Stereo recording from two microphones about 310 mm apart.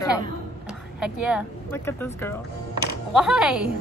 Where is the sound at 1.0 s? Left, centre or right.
Centre.